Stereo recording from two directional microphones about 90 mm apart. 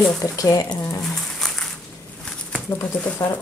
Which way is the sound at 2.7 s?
40° left (ahead or behind).